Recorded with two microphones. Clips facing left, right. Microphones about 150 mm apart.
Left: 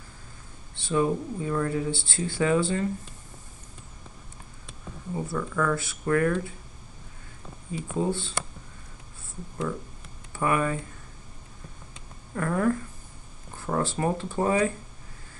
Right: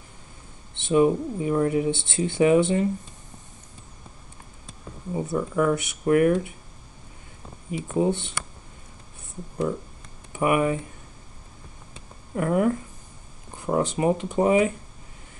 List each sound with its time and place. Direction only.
0.7 s speech: 20° right (ahead or behind)
5.1 s speech: 20° right (ahead or behind)
8.0 s speech: 20° right (ahead or behind)
10.3 s speech: 15° right (ahead or behind)
12.4 s speech: 20° right (ahead or behind)